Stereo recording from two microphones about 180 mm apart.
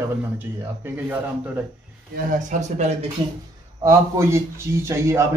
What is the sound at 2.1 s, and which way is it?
Speech, 40° right (ahead or behind).